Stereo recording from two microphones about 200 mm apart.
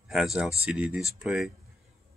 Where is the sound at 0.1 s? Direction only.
5° right (ahead or behind).